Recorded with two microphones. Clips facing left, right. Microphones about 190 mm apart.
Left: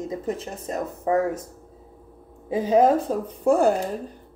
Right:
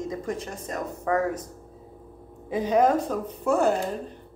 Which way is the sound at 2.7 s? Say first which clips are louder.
Left 3 dB; 30° left (ahead or behind).